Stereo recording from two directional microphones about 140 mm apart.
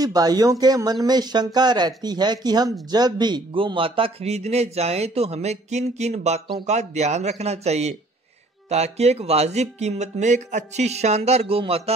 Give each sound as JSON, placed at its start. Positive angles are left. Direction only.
{"t": 0.0, "sound": "speech", "side_deg": -25}